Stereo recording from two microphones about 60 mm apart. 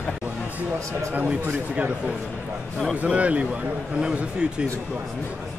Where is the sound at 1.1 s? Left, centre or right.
Right.